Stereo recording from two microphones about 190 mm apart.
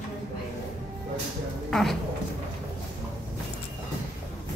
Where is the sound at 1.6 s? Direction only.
Centre (ahead or behind).